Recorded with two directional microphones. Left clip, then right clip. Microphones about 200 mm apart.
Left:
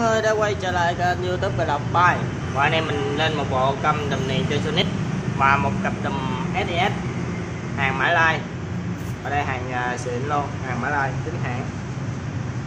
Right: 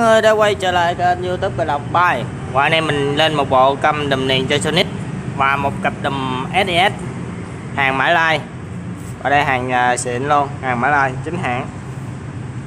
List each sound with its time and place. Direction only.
0.0 s speech: 40° right (ahead or behind); by 2.0 s 25° right (ahead or behind)
2.0 s speech: 50° right (ahead or behind)
5.4 s speech: 35° right (ahead or behind)